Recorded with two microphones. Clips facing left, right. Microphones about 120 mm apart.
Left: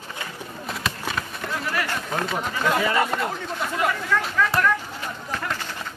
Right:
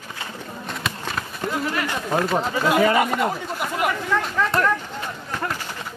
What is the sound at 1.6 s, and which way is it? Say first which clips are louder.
Speech: right 2 dB; 25° right (ahead or behind).